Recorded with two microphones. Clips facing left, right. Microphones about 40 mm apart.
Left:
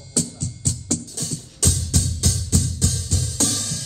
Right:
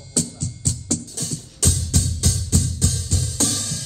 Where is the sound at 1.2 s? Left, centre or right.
Right.